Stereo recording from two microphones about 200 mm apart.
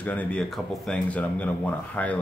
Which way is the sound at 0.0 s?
10° left (ahead or behind).